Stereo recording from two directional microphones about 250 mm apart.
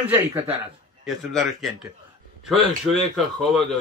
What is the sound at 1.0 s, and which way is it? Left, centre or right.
Speech, centre.